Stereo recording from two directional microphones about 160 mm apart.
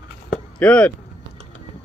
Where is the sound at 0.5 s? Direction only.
5° left (ahead or behind).